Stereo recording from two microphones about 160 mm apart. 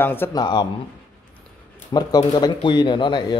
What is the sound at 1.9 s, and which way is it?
Speech, 25° left (ahead or behind).